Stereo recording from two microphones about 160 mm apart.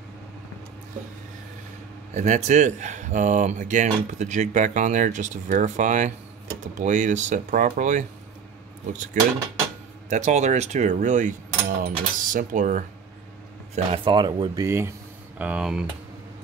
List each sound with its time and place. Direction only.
2.1 s speech: 45° right (ahead or behind)
10.0 s speech: 50° right (ahead or behind)
13.7 s speech: 35° right (ahead or behind); by 14.9 s 20° right (ahead or behind)
15.3 s speech: 10° right (ahead or behind)